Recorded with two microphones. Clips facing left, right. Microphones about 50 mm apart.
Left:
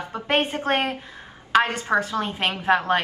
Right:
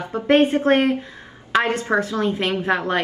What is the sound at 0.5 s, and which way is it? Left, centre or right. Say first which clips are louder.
A woman's voice: right 6 dB; right.